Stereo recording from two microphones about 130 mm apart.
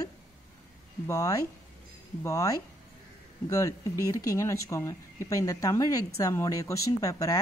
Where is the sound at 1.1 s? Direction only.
25° left (ahead or behind).